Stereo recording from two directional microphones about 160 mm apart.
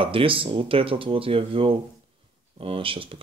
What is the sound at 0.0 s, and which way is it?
Speech, 35° right (ahead or behind).